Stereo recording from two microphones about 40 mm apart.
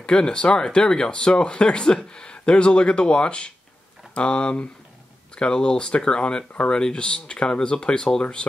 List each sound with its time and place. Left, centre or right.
0.0 s speech: left